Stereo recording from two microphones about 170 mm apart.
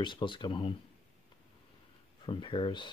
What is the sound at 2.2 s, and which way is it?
Speech, 30° left (ahead or behind).